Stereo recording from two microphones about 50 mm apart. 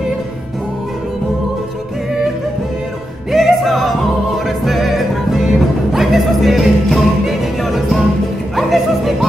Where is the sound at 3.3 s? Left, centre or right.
Centre.